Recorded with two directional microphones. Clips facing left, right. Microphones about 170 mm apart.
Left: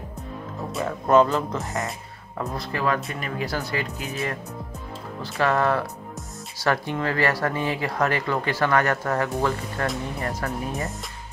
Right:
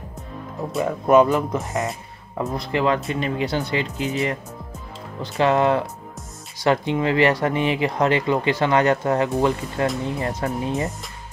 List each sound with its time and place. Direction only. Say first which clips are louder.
0.8 s speech: right 3 dB; 15° right (ahead or behind)